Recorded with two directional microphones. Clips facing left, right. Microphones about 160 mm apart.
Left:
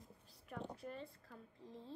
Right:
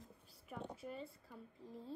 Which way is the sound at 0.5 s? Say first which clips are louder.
Even; 5° right (ahead or behind).